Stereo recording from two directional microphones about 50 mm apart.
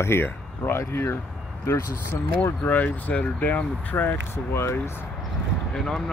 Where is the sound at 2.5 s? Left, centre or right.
Left.